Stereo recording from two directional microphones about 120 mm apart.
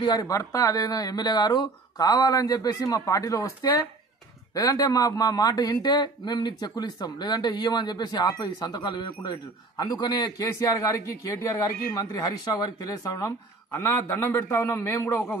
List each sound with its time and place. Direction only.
0.0 s speech: 35° left (ahead or behind)